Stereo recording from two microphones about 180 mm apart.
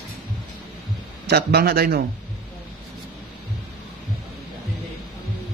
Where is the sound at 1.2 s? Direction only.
60° right (ahead or behind).